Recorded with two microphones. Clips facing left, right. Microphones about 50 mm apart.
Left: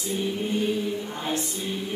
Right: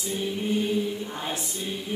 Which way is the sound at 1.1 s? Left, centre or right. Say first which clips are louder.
Left 3 dB; centre.